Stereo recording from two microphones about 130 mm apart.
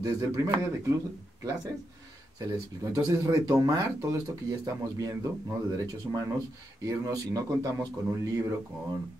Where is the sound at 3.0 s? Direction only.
25° right (ahead or behind).